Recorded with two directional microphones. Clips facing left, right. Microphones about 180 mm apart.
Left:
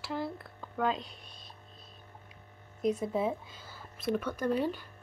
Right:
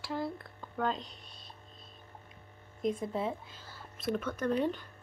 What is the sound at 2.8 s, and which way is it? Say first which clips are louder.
Speech: left 3 dB; 5° left (ahead or behind).